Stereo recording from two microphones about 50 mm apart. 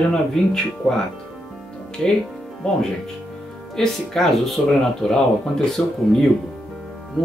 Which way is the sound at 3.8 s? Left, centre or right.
Centre.